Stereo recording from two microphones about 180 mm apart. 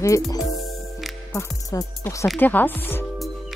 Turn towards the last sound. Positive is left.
turn(degrees=10)  # may be behind; listen again after turning